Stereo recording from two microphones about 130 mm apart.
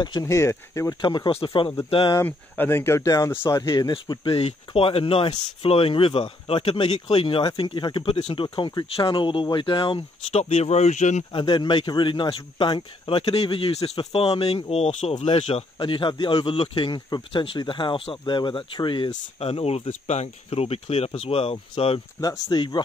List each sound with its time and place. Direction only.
0.0 s speech: 30° left (ahead or behind)
1.0 s speech: 40° left (ahead or behind)
2.1 s speech: 15° left (ahead or behind); by 4.4 s 40° left (ahead or behind)
4.4 s speech: 50° left (ahead or behind)
11.3 s speech: 35° left (ahead or behind)
19.4 s speech: 50° left (ahead or behind)
22.2 s speech: 30° left (ahead or behind)